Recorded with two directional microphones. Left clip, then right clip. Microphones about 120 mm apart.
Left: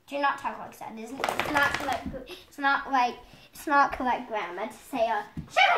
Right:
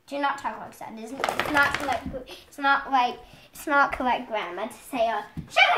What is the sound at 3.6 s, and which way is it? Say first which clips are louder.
Speech: right 1 dB; 25° right (ahead or behind).